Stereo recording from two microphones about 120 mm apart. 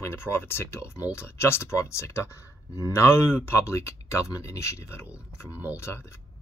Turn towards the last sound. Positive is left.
turn(degrees=20)  # may be behind; listen again after turning